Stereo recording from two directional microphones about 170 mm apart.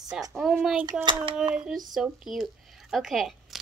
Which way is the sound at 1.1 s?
30° right (ahead or behind).